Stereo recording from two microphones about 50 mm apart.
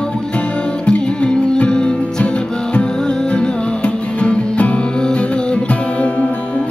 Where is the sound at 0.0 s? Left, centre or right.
Centre.